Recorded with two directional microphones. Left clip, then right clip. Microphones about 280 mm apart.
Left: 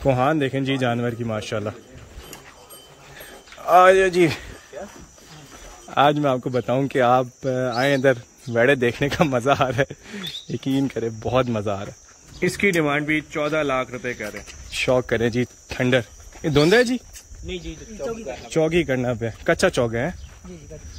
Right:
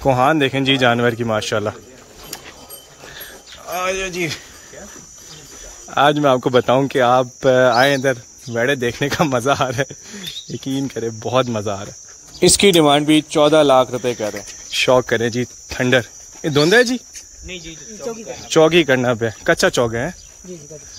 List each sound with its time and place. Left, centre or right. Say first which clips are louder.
0.0 s speech: right 5 dB; centre
3.6 s speech: left 9 dB; centre
5.9 s speech: right 4 dB; centre
12.4 s a man's voice: right 8 dB; centre
14.7 s speech: right 6 dB; centre
17.5 s speech: even; left
18.0 s speech: right 1 dB; centre